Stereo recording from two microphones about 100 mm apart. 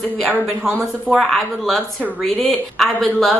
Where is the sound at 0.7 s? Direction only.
10° right (ahead or behind).